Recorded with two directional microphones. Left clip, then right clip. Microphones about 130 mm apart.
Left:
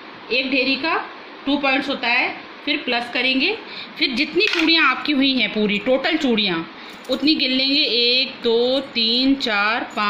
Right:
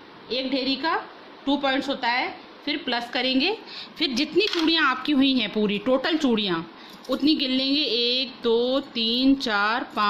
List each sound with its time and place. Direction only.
0.3 s a woman's voice: 60° right (ahead or behind); by 4.1 s 75° right (ahead or behind)
4.2 s a woman's voice: 90° right